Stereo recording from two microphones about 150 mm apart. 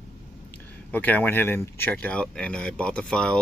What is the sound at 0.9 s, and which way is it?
Speech, 10° left (ahead or behind).